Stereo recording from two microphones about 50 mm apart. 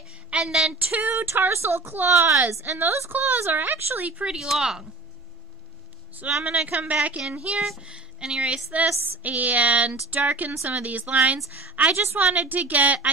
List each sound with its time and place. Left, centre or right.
0.4 s speech: centre
0.7 s a sound: right
1.5 s speech: right
4.0 s speech: right
4.4 s speech: centre
6.4 s speech: right
7.5 s speech: centre
7.8 s speech: centre
8.7 s a sound: right
11.7 s a woman's voice: right
12.0 s speech: right
12.3 s a sound: right